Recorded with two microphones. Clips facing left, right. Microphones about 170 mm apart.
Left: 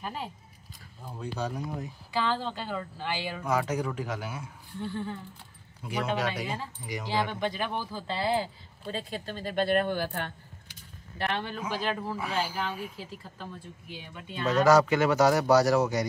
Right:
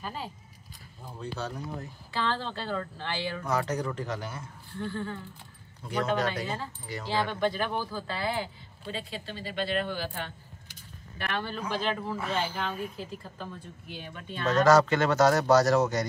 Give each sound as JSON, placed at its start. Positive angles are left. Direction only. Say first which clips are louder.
{"t": 0.0, "sound": "speech", "louder": "left 1 dB", "side_deg": 15}
{"t": 8.2, "sound": "speech", "louder": "left 4 dB", "side_deg": 30}
{"t": 8.9, "sound": "speech", "louder": "left 2 dB", "side_deg": 45}
{"t": 11.1, "sound": "a man's voice", "louder": "left 2 dB", "side_deg": 25}
{"t": 11.7, "sound": "speech", "louder": "right 1 dB", "side_deg": 5}